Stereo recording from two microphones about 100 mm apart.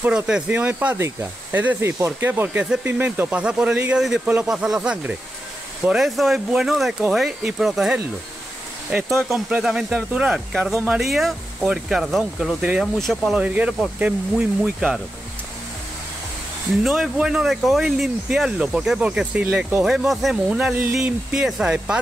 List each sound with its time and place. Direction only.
0.0 s speech: 10° right (ahead or behind)
0.9 s speech: 25° right (ahead or behind); by 8.0 s 5° right (ahead or behind)
9.3 s speech: 5° right (ahead or behind)
13.4 s speech: 10° right (ahead or behind)
16.8 s speech: 5° right (ahead or behind)